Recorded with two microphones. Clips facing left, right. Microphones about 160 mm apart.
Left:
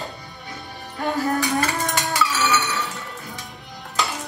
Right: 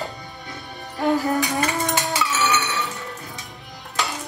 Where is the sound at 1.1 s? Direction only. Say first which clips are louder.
Right 1 dB; 20° right (ahead or behind).